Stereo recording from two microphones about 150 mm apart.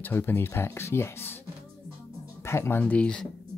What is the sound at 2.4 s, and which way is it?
Speech, 15° left (ahead or behind).